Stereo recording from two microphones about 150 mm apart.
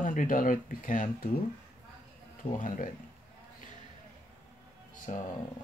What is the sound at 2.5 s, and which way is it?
Speech, 60° left (ahead or behind).